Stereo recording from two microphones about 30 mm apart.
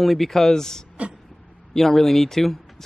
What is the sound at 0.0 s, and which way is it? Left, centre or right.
Speech, centre.